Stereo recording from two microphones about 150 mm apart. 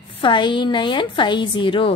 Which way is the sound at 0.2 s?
30° left (ahead or behind).